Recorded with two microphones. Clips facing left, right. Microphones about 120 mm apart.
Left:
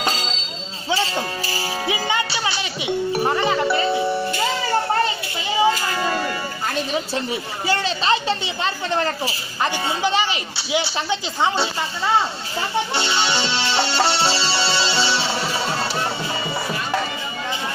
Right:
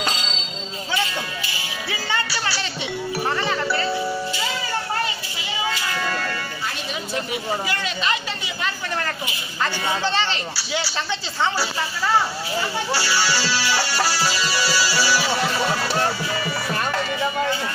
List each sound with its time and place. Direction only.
1.9 s music: 20° left (ahead or behind)
5.6 s a sound: 40° left (ahead or behind)
7.6 s speech: 30° left (ahead or behind)
10.0 s speech: 10° left (ahead or behind)
12.9 s music: 20° left (ahead or behind)